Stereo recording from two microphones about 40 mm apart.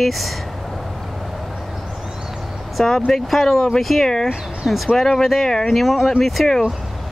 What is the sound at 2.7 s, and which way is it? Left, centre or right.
Speech, centre.